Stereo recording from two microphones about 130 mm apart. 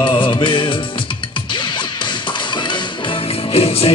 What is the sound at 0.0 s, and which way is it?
Music, 35° left (ahead or behind).